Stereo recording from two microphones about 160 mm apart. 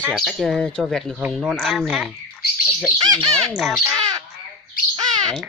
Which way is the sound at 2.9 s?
25° right (ahead or behind).